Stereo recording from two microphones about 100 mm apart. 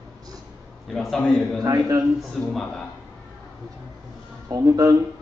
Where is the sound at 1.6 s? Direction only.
35° right (ahead or behind).